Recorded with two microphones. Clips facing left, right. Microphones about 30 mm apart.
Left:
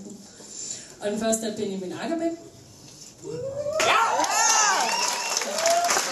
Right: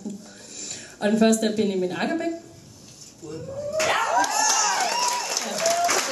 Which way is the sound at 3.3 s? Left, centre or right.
Centre.